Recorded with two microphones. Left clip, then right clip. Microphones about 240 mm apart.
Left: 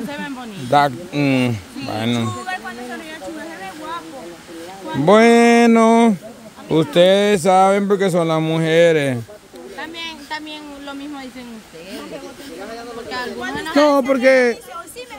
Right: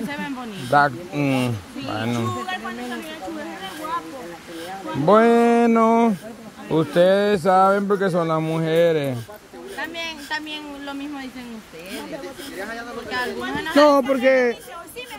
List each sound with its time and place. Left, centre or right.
0.7 s speech: centre
5.0 s speech: left
9.8 s a sound: centre
13.6 s speech: centre